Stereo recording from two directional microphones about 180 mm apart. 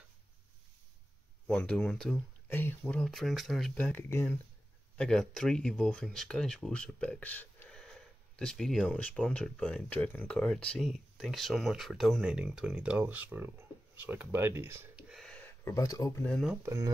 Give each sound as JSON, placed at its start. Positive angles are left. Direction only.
{"t": 1.5, "sound": "speech", "side_deg": 5}
{"t": 16.6, "sound": "speech", "side_deg": -20}